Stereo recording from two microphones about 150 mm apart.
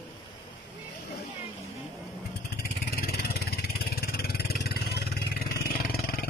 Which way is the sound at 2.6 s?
90° left.